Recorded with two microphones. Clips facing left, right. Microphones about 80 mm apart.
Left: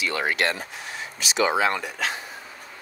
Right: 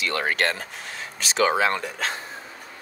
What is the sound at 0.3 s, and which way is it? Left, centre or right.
Speech, right.